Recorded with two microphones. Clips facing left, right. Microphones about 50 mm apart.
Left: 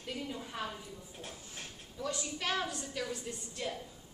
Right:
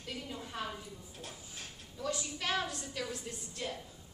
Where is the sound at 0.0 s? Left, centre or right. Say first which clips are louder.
Left 2 dB; centre.